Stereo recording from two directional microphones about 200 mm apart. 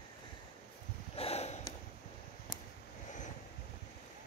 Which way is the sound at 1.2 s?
30° left (ahead or behind).